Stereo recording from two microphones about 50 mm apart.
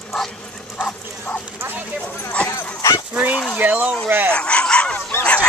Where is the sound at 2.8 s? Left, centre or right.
Left.